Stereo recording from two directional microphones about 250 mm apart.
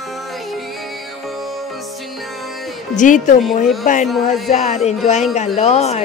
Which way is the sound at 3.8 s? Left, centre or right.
Left.